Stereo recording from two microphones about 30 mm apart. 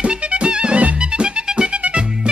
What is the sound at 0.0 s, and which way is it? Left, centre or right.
Music, right.